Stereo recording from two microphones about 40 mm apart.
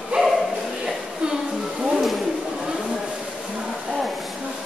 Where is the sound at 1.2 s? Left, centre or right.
Right.